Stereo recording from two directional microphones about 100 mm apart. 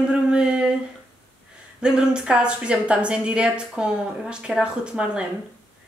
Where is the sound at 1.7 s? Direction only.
10° right (ahead or behind).